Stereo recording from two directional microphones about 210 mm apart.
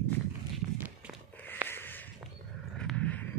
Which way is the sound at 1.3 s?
10° left (ahead or behind).